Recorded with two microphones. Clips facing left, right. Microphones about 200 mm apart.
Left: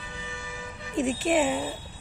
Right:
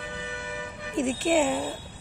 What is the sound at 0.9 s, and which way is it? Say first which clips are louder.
Speech: even; 5° left (ahead or behind).